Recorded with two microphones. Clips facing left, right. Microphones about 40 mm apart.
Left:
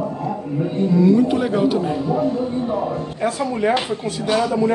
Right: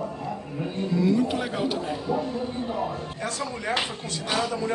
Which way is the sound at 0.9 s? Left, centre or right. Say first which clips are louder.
Left 8 dB; centre.